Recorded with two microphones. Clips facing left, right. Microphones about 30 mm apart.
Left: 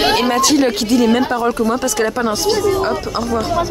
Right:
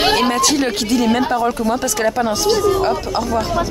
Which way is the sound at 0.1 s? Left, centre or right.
Centre.